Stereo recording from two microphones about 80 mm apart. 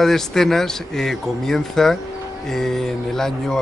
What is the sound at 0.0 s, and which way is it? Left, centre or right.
Speech, centre.